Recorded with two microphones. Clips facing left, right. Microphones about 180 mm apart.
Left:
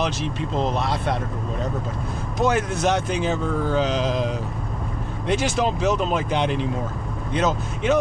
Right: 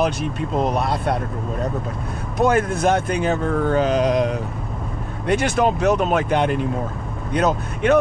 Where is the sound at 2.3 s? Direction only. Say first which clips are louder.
Right 4 dB; 55° right (ahead or behind).